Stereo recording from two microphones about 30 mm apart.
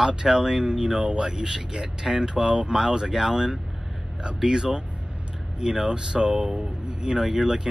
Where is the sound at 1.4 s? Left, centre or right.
Centre.